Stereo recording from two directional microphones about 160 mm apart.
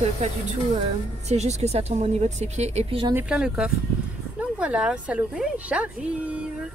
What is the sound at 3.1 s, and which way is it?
A woman's voice, 5° right (ahead or behind).